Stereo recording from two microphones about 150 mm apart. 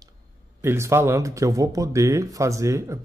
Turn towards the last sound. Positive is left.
turn(degrees=-20)  # may be behind; listen again after turning